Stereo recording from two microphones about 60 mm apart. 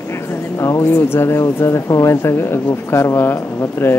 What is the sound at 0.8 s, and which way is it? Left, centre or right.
Speech, left.